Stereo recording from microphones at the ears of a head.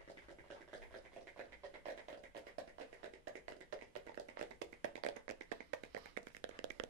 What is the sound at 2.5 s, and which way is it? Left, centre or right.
Tap, right.